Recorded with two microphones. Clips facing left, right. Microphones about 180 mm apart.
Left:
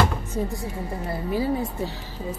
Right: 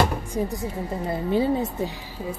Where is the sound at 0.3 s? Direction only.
20° right (ahead or behind).